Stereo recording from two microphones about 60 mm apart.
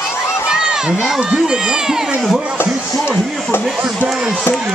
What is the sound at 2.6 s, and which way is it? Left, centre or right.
Speech, left.